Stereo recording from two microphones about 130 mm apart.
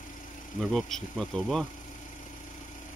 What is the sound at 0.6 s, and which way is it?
Speech, 5° left (ahead or behind).